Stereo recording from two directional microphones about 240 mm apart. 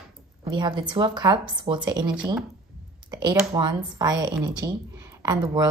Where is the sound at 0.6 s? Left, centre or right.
Centre.